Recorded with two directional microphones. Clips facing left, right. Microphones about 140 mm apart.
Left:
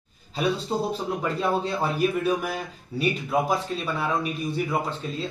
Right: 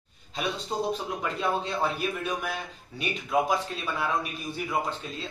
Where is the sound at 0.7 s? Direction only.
5° left (ahead or behind).